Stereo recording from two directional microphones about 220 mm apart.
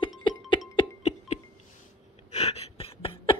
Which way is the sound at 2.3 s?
30° left (ahead or behind).